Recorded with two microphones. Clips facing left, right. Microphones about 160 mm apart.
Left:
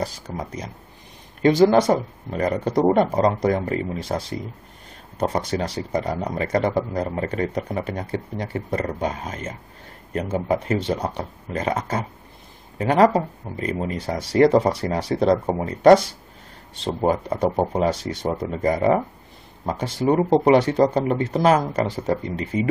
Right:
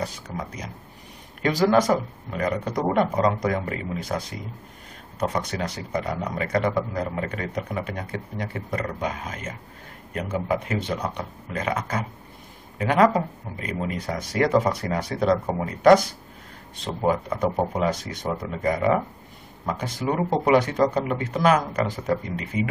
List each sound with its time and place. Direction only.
0.0 s speech: 30° left (ahead or behind)